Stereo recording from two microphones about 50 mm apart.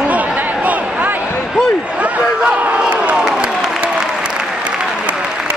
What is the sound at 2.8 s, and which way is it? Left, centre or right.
Crowd, right.